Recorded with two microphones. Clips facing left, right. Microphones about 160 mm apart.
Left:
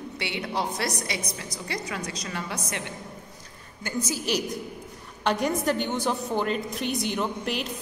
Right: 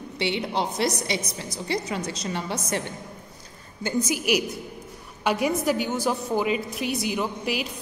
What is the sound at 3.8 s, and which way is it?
A woman's voice, 15° right (ahead or behind).